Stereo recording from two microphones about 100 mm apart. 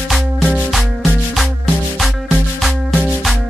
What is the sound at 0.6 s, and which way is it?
Music, centre (ahead or behind).